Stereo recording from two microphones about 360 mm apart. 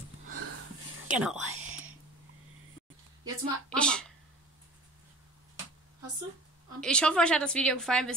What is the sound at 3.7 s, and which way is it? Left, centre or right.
Speech, centre.